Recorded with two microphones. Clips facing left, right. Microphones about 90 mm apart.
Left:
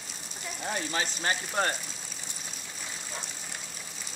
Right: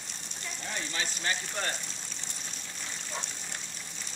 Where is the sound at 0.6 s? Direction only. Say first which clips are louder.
Left 5 dB; 40° left (ahead or behind).